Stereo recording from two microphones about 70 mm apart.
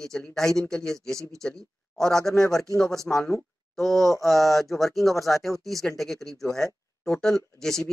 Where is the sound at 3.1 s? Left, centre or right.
Centre.